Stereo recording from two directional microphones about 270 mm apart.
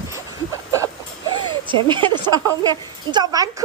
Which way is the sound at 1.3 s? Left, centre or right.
Centre.